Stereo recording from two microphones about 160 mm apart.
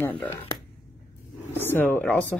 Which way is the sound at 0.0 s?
15° left (ahead or behind).